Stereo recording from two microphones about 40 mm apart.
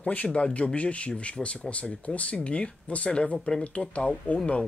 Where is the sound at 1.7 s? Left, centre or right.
Left.